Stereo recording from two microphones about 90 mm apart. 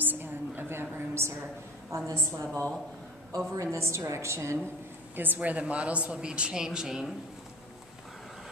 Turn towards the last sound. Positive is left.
turn(degrees=-5)  # may be behind; listen again after turning